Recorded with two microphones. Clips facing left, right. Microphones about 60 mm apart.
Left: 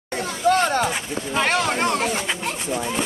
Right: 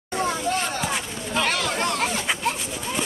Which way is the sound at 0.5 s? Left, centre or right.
Left.